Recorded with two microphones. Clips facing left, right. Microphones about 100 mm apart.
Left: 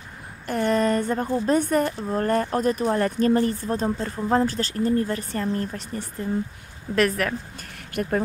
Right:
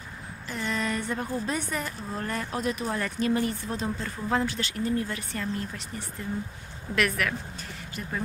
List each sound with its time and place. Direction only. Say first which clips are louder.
0.5 s a sound: left 9 dB; 50° left (ahead or behind)
1.2 s a woman's voice: left 9 dB; 35° left (ahead or behind)
7.9 s speech: left 11 dB; 60° left (ahead or behind)